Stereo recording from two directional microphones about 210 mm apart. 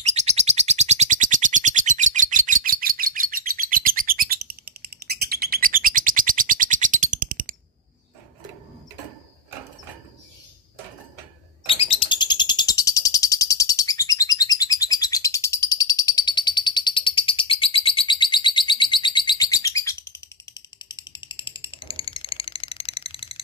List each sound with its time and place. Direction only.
0.0 s bird: 30° right (ahead or behind)
11.6 s bird: 25° left (ahead or behind)